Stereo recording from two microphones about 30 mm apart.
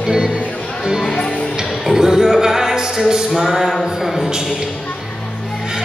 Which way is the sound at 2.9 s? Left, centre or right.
Centre.